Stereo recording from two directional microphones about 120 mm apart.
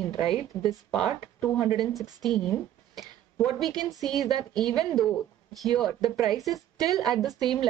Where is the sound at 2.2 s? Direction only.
5° left (ahead or behind).